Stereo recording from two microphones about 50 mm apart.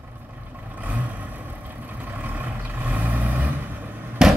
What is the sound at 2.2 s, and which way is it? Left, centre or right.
Vehicle, right.